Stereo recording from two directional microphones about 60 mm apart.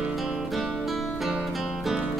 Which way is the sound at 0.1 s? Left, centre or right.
Centre.